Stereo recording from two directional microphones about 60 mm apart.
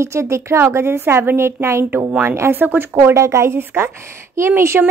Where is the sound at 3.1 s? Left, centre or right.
Right.